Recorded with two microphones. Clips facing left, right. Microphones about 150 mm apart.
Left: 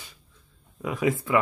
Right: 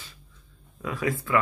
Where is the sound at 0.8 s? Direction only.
20° left (ahead or behind).